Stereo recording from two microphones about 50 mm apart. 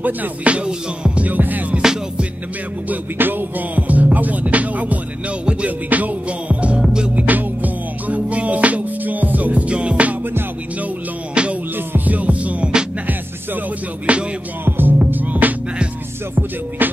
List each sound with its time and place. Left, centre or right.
0.0 s music: right
1.3 s music: right
1.8 s music: centre
2.9 s music: right
5.4 s music: right
5.9 s music: right
6.8 s music: centre
7.2 s music: right
11.4 s music: right
11.7 s music: right
14.1 s music: right
14.6 s music: right